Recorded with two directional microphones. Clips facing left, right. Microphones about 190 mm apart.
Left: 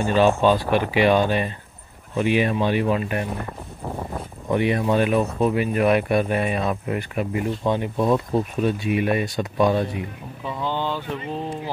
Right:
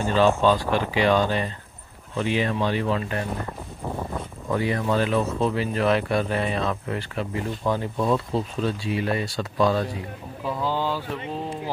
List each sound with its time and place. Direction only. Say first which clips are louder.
0.0 s speech: left 2 dB; 15° left (ahead or behind)
3.3 s a sound: left 1 dB; centre (ahead or behind)
5.4 s speech: left 3 dB; 15° left (ahead or behind)
10.4 s speech: even; 5° right (ahead or behind)